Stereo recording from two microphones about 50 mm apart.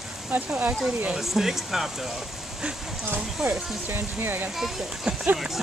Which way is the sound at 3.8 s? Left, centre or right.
Right.